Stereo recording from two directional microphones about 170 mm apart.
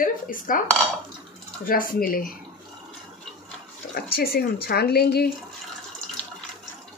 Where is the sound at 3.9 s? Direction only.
65° left (ahead or behind).